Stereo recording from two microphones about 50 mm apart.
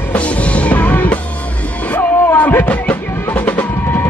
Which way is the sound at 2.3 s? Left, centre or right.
Left.